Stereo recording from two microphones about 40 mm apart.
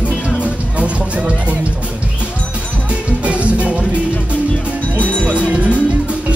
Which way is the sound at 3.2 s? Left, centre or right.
Right.